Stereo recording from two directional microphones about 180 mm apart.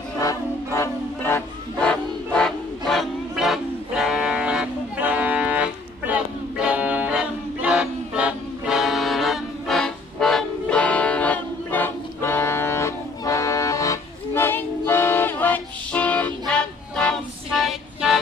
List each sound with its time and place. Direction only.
0.2 s music: 15° left (ahead or behind); by 18.2 s centre (ahead or behind)